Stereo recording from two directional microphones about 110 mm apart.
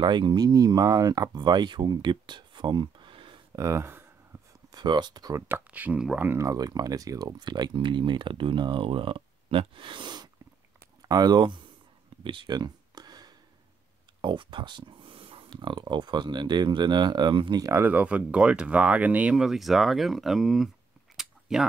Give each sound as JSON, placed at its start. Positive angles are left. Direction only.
{"t": 0.0, "sound": "speech", "side_deg": -45}
{"t": 3.5, "sound": "speech", "side_deg": -25}
{"t": 4.6, "sound": "speech", "side_deg": -40}
{"t": 5.5, "sound": "speech", "side_deg": -15}
{"t": 12.2, "sound": "a sound", "side_deg": -50}
{"t": 14.2, "sound": "speech", "side_deg": -50}
{"t": 17.7, "sound": "speech", "side_deg": -15}
{"t": 21.2, "sound": "a sound", "side_deg": -5}